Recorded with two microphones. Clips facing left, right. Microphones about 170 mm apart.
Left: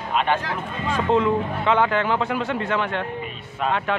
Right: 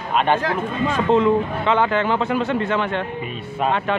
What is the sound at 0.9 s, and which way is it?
A man's voice, 10° left (ahead or behind).